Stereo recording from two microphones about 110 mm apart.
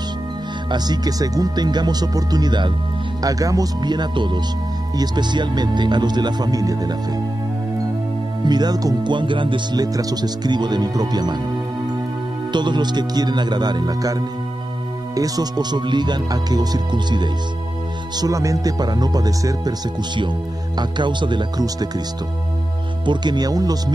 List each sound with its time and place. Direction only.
0.7 s speech: 40° right (ahead or behind)
8.5 s speech: 40° right (ahead or behind)
12.5 s speech: 45° right (ahead or behind)
23.0 s speech: 40° right (ahead or behind)